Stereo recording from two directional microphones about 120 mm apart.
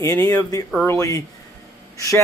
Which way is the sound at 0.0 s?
30° left (ahead or behind).